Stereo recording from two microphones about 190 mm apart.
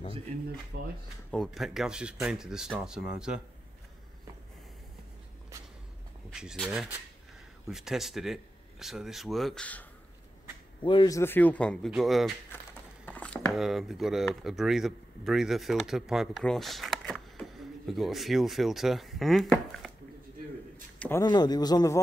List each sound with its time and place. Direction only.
0.7 s speech: 70° right (ahead or behind)
1.3 s speech: centre (ahead or behind)
6.3 s speech: 5° right (ahead or behind)
10.8 s speech: 25° left (ahead or behind); by 19.9 s centre (ahead or behind)
21.0 s speech: 15° left (ahead or behind)